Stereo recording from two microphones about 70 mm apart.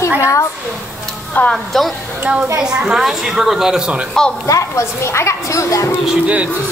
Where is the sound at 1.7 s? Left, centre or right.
Centre.